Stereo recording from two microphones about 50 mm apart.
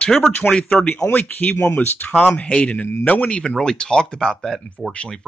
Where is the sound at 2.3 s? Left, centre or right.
Left.